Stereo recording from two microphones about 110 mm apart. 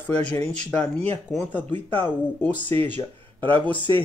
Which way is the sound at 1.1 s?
15° left (ahead or behind).